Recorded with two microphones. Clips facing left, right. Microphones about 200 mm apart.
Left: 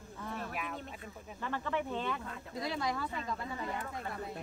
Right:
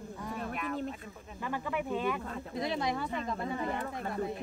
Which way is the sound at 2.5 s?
20° right (ahead or behind).